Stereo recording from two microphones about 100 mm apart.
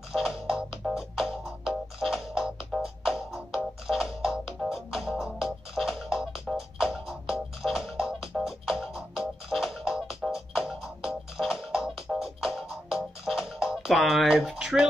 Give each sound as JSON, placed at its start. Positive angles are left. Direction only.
{"t": 0.1, "sound": "music", "side_deg": -5}